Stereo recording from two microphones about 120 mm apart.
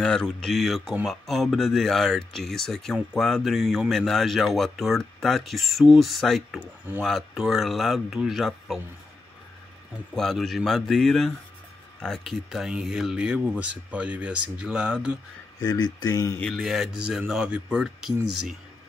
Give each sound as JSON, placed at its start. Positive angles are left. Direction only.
{"t": 0.0, "sound": "speech", "side_deg": 5}
{"t": 10.1, "sound": "speech", "side_deg": 0}
{"t": 15.6, "sound": "speech", "side_deg": 35}
{"t": 16.3, "sound": "speech", "side_deg": 5}